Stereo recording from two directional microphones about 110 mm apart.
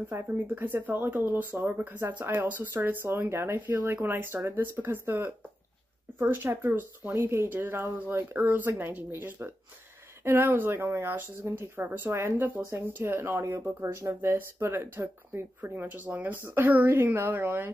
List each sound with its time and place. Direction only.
0.1 s speech: 20° right (ahead or behind)